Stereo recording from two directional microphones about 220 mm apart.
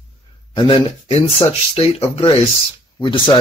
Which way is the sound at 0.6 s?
20° left (ahead or behind).